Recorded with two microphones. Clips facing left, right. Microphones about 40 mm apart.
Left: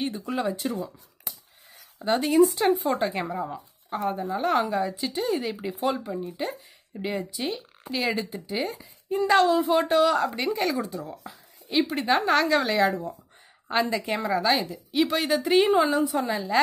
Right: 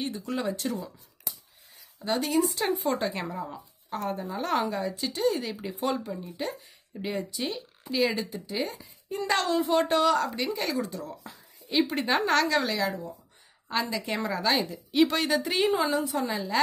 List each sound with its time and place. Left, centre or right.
0.0 s a woman's voice: centre
2.0 s speech: left
2.5 s a woman's voice: centre
12.6 s a woman's voice: left
13.9 s a woman's voice: centre